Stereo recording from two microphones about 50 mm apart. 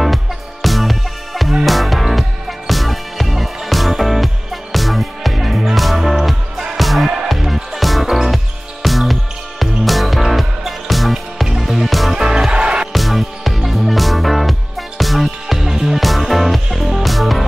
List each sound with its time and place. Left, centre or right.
0.0 s music: centre
12.3 s music: centre
12.9 s music: centre